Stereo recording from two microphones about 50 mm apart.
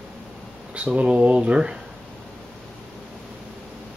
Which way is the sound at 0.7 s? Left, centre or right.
Right.